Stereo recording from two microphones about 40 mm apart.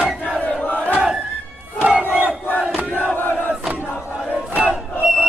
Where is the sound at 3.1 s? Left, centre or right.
Left.